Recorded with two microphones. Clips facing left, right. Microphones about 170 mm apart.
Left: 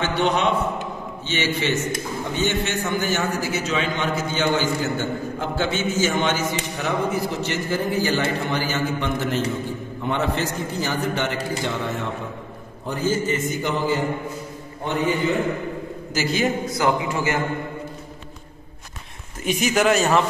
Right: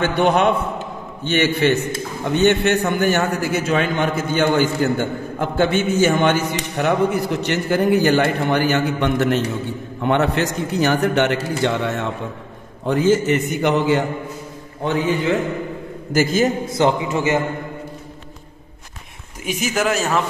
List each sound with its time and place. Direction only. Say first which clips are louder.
0.0 s a man's voice: right 5 dB; 55° right (ahead or behind); by 12.1 s 70° right (ahead or behind)
12.8 s a man's voice: right 7 dB; 90° right; by 14.0 s 75° right (ahead or behind)
14.9 s a man's voice: right 3 dB; 90° right
16.1 s a man's voice: right 6 dB; 50° right (ahead or behind)
16.6 s a man's voice: right 3 dB; 25° right (ahead or behind)
19.4 s a man's voice: left 1 dB; 5° right (ahead or behind)